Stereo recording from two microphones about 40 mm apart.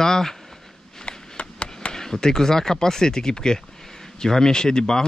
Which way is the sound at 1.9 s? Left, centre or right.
Centre.